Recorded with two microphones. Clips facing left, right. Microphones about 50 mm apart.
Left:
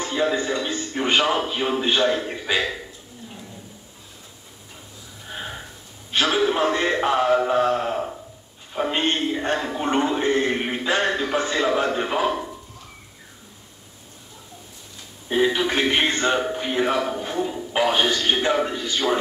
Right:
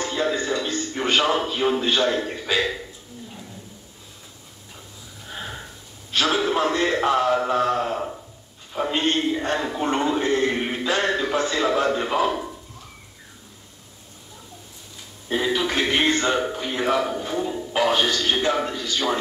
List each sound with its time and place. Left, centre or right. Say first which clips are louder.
0.0 s a man's voice: left 1 dB; centre
1.4 s a man's voice: right 1 dB; centre
6.1 s a sound: left 1 dB; centre
11.6 s a man's voice: even; centre
15.2 s music: left 2 dB; centre
16.5 s speech: left 1 dB; centre
17.2 s music: even; centre
17.7 s a man's voice: left 1 dB; centre